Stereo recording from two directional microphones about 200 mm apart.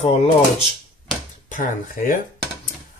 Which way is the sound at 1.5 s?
45° left (ahead or behind).